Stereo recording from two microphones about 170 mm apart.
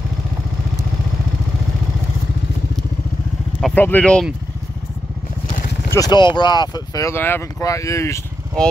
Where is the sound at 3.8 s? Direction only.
10° left (ahead or behind).